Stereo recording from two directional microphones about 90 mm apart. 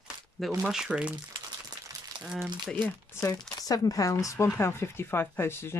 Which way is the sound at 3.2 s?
40° left (ahead or behind).